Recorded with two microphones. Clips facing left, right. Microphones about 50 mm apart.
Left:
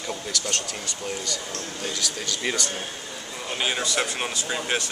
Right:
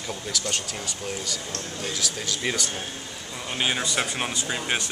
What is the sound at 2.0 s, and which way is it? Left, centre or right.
Speech, centre.